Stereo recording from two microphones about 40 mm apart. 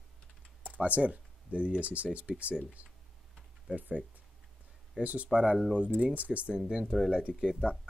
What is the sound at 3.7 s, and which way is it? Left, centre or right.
Speech, right.